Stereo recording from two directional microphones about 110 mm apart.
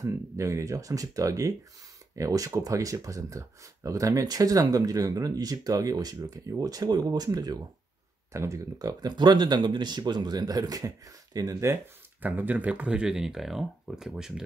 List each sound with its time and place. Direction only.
0.0 s speech: 30° right (ahead or behind)
12.3 s speech: 15° right (ahead or behind)